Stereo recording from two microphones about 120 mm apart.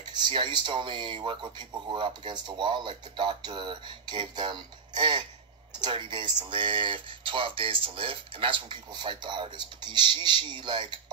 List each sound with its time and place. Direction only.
0.0 s speech: 40° right (ahead or behind)